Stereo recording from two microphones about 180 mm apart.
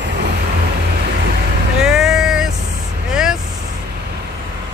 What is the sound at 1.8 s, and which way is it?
Vehicle, 5° right (ahead or behind).